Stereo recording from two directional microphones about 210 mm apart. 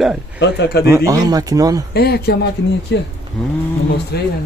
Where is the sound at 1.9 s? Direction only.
50° left (ahead or behind).